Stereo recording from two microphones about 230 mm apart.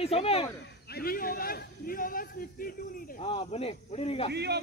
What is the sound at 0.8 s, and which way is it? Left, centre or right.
A man's voice, left.